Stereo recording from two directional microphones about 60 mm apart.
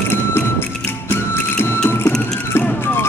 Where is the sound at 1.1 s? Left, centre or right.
Left.